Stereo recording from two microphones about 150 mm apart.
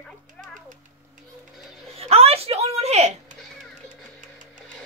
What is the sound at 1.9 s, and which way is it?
Speech, 45° right (ahead or behind).